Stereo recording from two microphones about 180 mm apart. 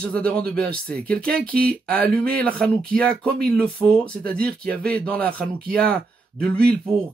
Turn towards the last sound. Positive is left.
turn(degrees=5)  # may be behind; listen again after turning